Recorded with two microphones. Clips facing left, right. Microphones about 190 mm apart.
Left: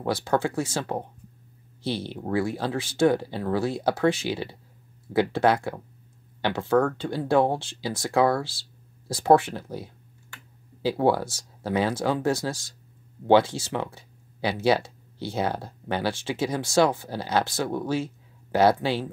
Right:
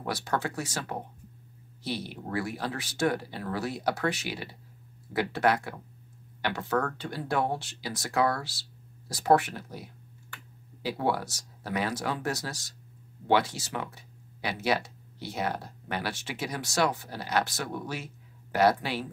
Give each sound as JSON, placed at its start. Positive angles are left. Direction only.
{"t": 0.0, "sound": "speech", "side_deg": 25}